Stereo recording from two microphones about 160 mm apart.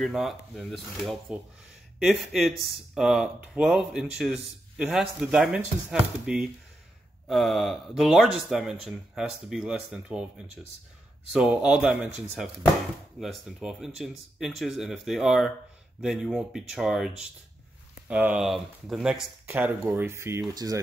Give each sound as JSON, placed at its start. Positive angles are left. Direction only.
{"t": 0.0, "sound": "speech", "side_deg": 0}
{"t": 19.4, "sound": "speech", "side_deg": -15}